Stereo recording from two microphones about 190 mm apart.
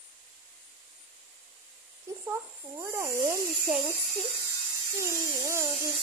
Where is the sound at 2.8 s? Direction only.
15° right (ahead or behind).